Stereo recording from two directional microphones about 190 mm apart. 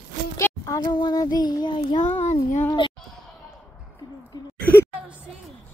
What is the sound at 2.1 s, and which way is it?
Speech, 35° left (ahead or behind).